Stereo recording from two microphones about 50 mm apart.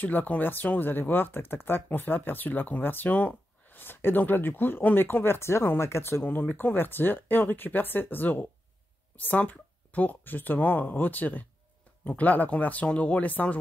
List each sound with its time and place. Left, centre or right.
0.0 s speech: left
3.8 s speech: left
6.5 s speech: left